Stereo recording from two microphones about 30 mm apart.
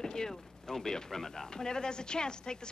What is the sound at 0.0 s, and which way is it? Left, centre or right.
Speech, centre.